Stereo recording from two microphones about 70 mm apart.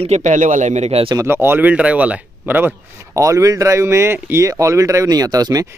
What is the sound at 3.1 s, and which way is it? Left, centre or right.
Speech, right.